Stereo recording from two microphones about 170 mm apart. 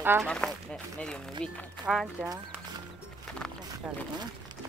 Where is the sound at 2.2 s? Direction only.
20° right (ahead or behind).